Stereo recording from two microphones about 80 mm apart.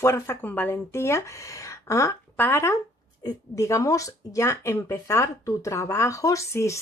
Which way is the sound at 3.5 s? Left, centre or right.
Left.